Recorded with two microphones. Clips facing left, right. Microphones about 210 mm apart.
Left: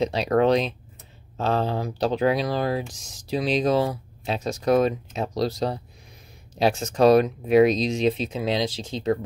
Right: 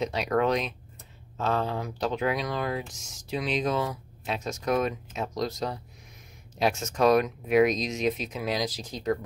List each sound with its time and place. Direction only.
0.0 s speech: 30° left (ahead or behind)